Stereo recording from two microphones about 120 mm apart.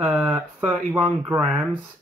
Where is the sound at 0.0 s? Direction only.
10° right (ahead or behind).